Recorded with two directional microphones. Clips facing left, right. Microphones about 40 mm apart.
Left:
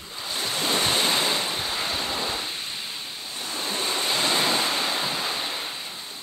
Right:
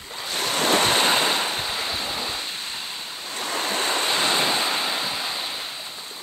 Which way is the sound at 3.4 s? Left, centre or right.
Right.